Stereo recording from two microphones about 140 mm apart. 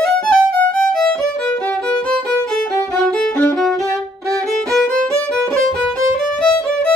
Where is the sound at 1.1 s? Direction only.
5° left (ahead or behind).